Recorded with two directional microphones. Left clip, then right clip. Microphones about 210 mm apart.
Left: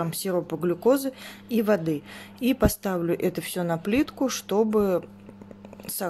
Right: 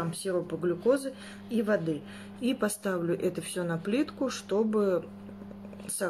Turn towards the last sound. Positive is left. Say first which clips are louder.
# left 2 dB
turn(degrees=45)  # may be behind; listen again after turning